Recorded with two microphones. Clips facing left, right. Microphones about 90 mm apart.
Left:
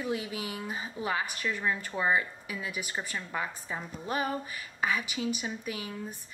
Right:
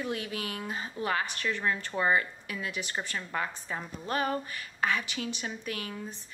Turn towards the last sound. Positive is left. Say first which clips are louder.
# even
turn(degrees=10)  # may be behind; listen again after turning